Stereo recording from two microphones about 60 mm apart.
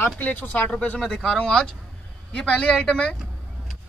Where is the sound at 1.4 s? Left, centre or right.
Centre.